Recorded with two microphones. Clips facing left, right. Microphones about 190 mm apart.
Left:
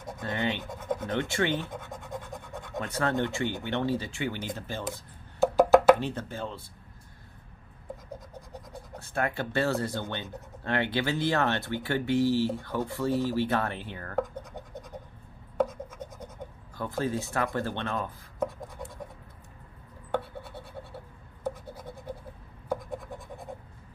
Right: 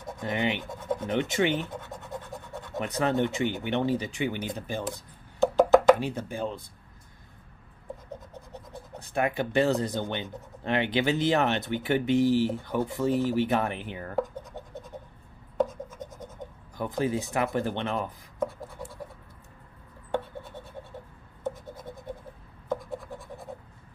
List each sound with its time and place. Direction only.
0.2 s speech: 15° right (ahead or behind)
1.9 s scratch: 15° left (ahead or behind)
2.8 s speech: 15° right (ahead or behind)
5.4 s wood block: 10° left (ahead or behind)
5.9 s speech: 10° right (ahead or behind)
9.0 s speech: 15° right (ahead or behind)
14.5 s scratch: 15° left (ahead or behind)
16.7 s speech: 15° right (ahead or behind)
18.6 s a sound: centre (ahead or behind)
21.6 s a sound: 10° left (ahead or behind)